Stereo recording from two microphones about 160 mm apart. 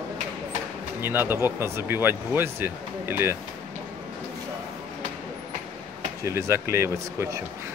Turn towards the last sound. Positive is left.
turn(degrees=-15)  # may be behind; listen again after turning